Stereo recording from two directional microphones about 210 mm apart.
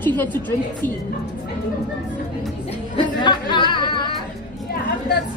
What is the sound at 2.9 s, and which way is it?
Music, 20° left (ahead or behind).